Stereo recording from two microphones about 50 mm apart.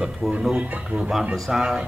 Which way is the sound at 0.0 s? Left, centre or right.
Centre.